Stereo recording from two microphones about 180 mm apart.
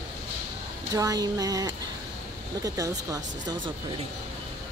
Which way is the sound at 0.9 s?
20° right (ahead or behind).